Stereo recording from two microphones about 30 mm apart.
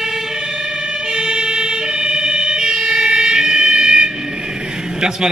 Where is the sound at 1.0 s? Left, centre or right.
Right.